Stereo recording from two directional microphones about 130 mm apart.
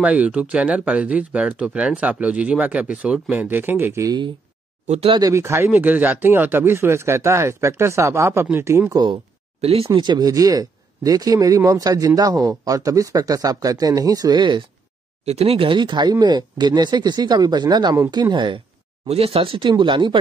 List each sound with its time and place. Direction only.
0.0 s speech: 10° right (ahead or behind)
4.8 s speech: 55° right (ahead or behind)
5.3 s speech: 20° right (ahead or behind)
9.0 s a sound: 45° right (ahead or behind)
9.9 s speech: 35° right (ahead or behind)
15.2 s speech: 50° right (ahead or behind)
19.0 s speech: 50° right (ahead or behind)